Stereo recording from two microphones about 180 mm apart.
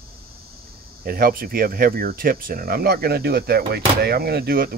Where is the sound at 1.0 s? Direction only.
55° right (ahead or behind).